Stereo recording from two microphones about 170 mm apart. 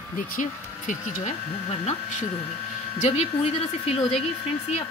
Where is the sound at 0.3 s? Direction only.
50° left (ahead or behind).